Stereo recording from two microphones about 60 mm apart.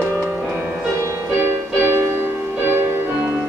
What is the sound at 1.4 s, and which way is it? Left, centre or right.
Music, right.